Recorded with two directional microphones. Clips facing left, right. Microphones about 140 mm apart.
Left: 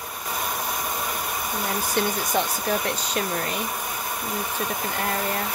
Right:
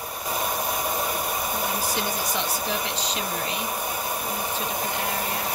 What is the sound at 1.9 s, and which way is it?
Speech, 50° left (ahead or behind).